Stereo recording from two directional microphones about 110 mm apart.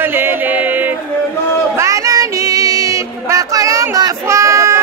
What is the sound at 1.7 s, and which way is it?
Child singing, 30° right (ahead or behind).